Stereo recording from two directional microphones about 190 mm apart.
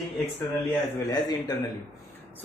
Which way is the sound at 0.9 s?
20° left (ahead or behind).